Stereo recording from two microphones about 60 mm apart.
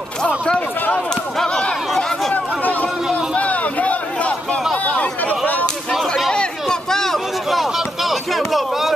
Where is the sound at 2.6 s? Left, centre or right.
Left.